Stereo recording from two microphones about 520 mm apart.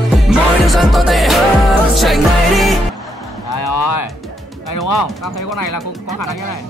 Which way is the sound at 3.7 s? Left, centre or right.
Left.